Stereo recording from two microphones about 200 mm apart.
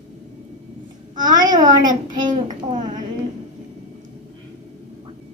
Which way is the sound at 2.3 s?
40° right (ahead or behind).